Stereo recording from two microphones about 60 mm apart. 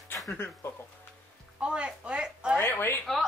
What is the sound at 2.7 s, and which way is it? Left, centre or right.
Speech, left.